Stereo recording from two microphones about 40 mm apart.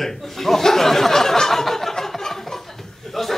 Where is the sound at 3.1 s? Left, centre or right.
Centre.